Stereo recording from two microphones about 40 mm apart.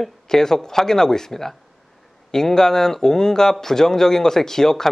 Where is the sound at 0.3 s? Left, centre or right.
Centre.